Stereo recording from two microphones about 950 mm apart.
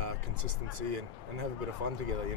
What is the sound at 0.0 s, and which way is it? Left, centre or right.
Speech, right.